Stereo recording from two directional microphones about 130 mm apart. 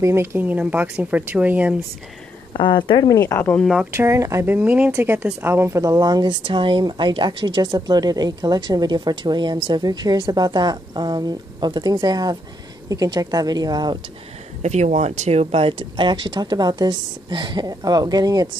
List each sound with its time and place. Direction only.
0.0 s speech: 20° right (ahead or behind)
2.5 s speech: 40° left (ahead or behind)
3.2 s speech: 15° left (ahead or behind)
3.9 s speech: 20° right (ahead or behind)
4.6 s speech: 10° right (ahead or behind); by 13.9 s 30° right (ahead or behind)
14.6 s speech: 60° right (ahead or behind); by 18.5 s 30° right (ahead or behind)